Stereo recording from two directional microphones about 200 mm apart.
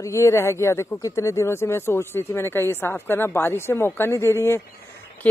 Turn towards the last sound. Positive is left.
turn(degrees=15)  # may be behind; listen again after turning